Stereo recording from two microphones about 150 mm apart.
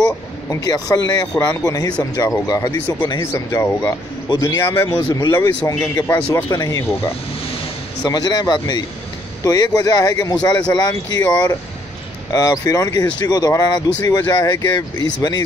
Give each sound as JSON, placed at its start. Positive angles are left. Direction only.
{"t": 0.0, "sound": "speech", "side_deg": 25}